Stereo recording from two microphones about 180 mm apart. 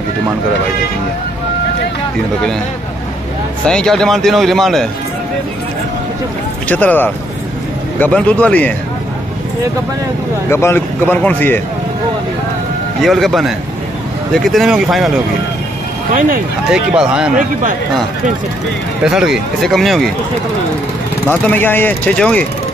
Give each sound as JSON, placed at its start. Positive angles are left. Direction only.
{"t": 3.6, "sound": "speech", "side_deg": 5}
{"t": 6.7, "sound": "speech", "side_deg": 10}
{"t": 10.5, "sound": "speech", "side_deg": 15}
{"t": 13.0, "sound": "speech", "side_deg": 0}
{"t": 16.1, "sound": "a man's voice", "side_deg": -50}
{"t": 16.6, "sound": "speech", "side_deg": -5}
{"t": 17.4, "sound": "a man's voice", "side_deg": -45}
{"t": 19.0, "sound": "speech", "side_deg": -5}
{"t": 21.3, "sound": "speech", "side_deg": 10}